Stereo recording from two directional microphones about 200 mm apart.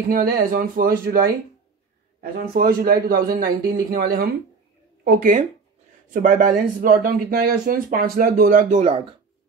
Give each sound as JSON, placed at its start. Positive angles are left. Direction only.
{"t": 0.1, "sound": "speech", "side_deg": -45}
{"t": 2.3, "sound": "speech", "side_deg": -45}